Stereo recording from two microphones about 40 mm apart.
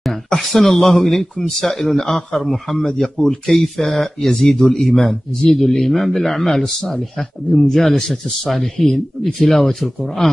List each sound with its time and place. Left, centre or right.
0.4 s speech: centre
2.8 s speech: centre